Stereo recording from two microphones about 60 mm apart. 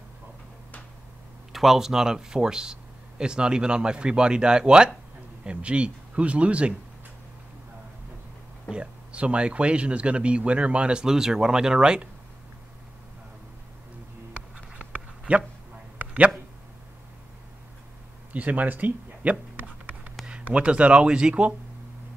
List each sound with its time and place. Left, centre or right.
1.5 s speech: centre; by 6.7 s right
8.6 s speech: centre
14.3 s dog: centre
16.0 s a sound: right
18.3 s speech: right
20.4 s speech: centre